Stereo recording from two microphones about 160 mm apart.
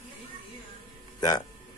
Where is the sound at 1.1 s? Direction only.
25° left (ahead or behind).